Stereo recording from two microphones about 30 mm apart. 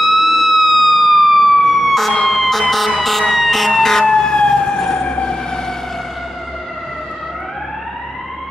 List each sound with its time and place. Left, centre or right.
0.0 s emergency vehicle: centre
4.1 s emergency vehicle: left
5.0 s fire engine: left